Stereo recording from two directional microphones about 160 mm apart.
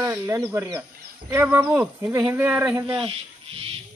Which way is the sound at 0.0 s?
15° right (ahead or behind).